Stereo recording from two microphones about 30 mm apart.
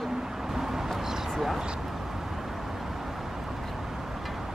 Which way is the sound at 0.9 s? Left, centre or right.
Centre.